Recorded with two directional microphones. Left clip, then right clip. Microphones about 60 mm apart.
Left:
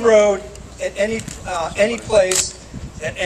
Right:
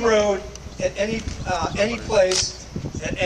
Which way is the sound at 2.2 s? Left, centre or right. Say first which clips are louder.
Left 2 dB; left.